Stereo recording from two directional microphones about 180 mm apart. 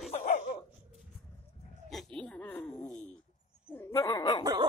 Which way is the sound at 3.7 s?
15° left (ahead or behind).